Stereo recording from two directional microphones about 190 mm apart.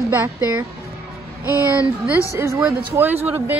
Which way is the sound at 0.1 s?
15° right (ahead or behind).